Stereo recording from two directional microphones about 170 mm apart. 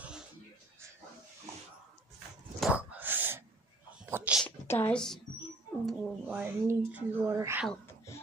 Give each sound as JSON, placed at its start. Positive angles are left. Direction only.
{"t": 2.6, "sound": "wail", "side_deg": -10}
{"t": 4.0, "sound": "sneeze", "side_deg": -10}
{"t": 4.5, "sound": "a woman's voice", "side_deg": 10}
{"t": 5.9, "sound": "speech", "side_deg": -5}
{"t": 7.8, "sound": "a sound", "side_deg": 15}